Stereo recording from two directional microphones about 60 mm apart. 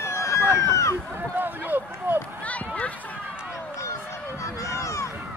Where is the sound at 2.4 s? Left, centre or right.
Left.